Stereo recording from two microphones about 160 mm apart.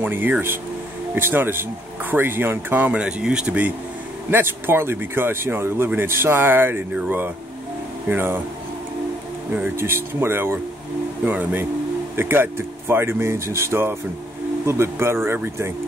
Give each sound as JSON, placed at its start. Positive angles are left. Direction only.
{"t": 0.0, "sound": "speech", "side_deg": -10}
{"t": 9.6, "sound": "speech", "side_deg": -15}